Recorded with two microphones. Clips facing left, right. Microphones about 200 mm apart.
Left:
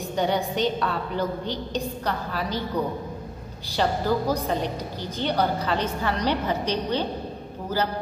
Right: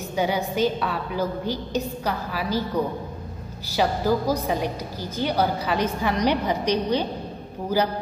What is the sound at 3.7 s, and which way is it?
A woman's voice, 10° right (ahead or behind).